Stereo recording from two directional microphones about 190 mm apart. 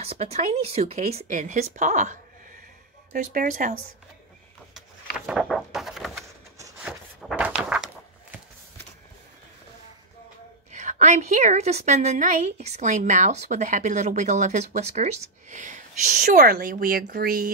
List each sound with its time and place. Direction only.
0.0 s a woman's voice: 35° right (ahead or behind)
4.7 s a sound: 5° right (ahead or behind)
10.7 s a woman's voice: 40° right (ahead or behind)